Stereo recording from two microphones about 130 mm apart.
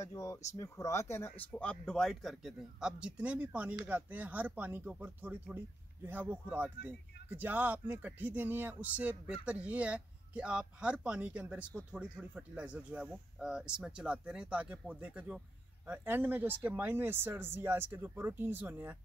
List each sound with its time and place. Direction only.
0.0 s speech: 25° left (ahead or behind)
1.5 s speech: 10° left (ahead or behind); by 18.9 s 15° right (ahead or behind)